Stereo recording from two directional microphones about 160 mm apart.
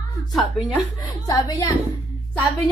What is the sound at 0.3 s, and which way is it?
Speech, centre (ahead or behind).